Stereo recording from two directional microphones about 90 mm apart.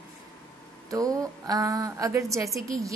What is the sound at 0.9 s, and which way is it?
A woman's voice, 40° right (ahead or behind).